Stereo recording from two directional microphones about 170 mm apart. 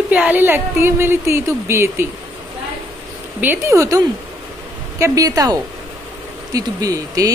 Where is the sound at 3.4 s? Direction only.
15° right (ahead or behind).